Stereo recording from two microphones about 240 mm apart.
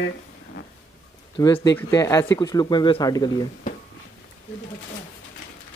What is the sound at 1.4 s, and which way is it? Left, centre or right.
Speech, centre.